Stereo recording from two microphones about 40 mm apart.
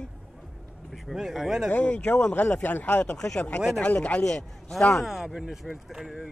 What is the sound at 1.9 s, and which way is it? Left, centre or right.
Speech, left.